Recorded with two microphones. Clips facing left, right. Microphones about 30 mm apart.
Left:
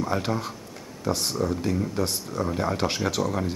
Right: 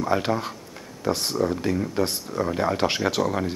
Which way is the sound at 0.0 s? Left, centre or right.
Centre.